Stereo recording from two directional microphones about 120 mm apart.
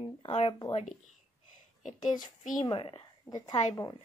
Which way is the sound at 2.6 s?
45° left (ahead or behind).